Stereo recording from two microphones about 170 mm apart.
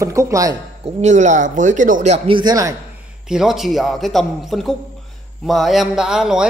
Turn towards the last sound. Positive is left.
turn(degrees=-5)  # may be behind; listen again after turning